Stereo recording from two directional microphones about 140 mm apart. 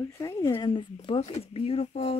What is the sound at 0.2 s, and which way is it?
Speech, 25° left (ahead or behind).